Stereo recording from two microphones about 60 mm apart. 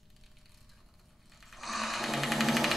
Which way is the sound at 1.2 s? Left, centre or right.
Centre.